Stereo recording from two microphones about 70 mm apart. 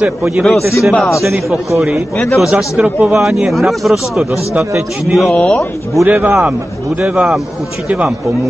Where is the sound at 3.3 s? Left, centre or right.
Centre.